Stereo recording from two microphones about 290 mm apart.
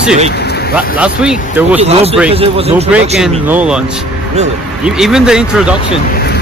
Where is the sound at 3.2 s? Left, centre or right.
Centre.